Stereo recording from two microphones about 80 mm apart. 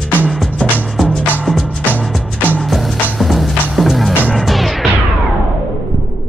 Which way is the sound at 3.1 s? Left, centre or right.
Centre.